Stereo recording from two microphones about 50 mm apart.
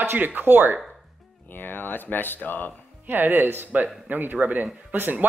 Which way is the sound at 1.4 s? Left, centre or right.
Left.